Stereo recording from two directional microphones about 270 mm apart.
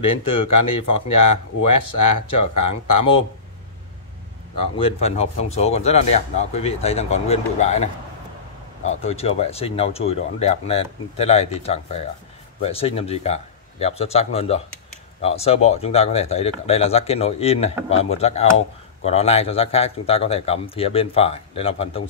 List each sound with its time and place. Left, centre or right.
0.4 s speech: left
2.7 s speech: centre
4.7 s speech: left